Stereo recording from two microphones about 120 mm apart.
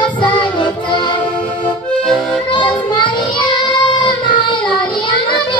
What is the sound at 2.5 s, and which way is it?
Child singing, 40° left (ahead or behind).